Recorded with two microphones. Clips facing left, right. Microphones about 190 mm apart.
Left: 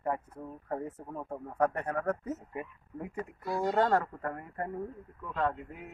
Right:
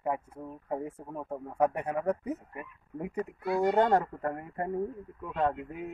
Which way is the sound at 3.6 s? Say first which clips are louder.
Right 3 dB; 20° right (ahead or behind).